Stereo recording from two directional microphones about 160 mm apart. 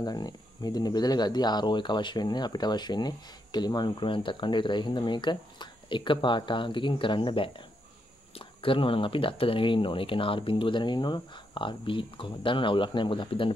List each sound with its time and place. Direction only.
0.0 s speech: 25° left (ahead or behind)